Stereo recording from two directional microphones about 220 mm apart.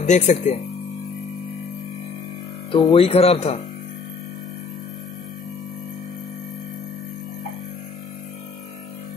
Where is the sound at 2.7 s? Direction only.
25° left (ahead or behind).